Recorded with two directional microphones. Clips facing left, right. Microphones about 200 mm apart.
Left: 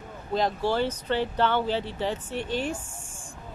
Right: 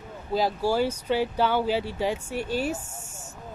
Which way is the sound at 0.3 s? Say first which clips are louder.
Right 1 dB; 5° right (ahead or behind).